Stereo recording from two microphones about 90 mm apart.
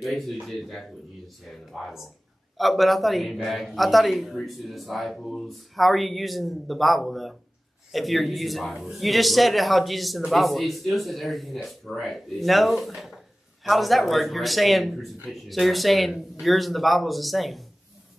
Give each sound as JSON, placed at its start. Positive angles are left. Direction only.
{"t": 0.0, "sound": "a man's voice", "side_deg": 0}